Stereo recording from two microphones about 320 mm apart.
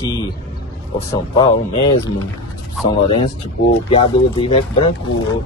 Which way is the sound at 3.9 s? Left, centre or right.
Centre.